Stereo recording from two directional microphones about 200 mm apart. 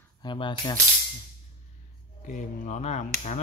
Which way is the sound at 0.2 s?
20° left (ahead or behind).